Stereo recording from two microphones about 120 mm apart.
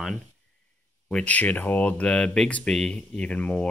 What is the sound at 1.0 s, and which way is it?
Speech, 10° left (ahead or behind).